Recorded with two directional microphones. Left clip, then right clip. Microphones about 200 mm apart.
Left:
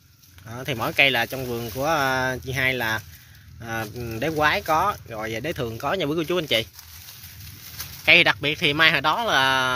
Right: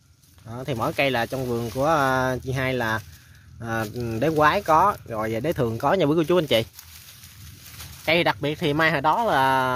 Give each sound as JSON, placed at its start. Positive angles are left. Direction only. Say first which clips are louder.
{"t": 0.5, "sound": "speech", "louder": "even", "side_deg": -20}
{"t": 8.0, "sound": "speech", "louder": "left 5 dB", "side_deg": -25}